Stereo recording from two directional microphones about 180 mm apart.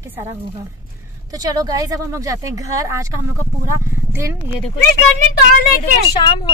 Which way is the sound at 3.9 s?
15° right (ahead or behind).